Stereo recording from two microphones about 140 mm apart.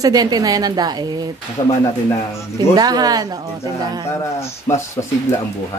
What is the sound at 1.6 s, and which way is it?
Speech, 50° left (ahead or behind).